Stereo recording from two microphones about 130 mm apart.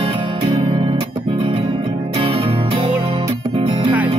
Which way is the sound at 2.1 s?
40° right (ahead or behind).